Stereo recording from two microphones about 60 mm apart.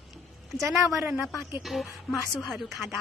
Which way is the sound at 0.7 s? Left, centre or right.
Centre.